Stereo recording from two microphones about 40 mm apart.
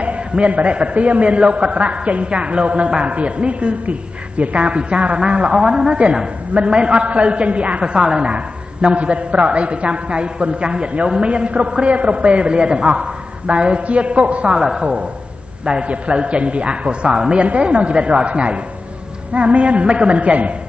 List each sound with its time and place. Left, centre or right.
0.0 s a man's voice: right
14.5 s a man's voice: right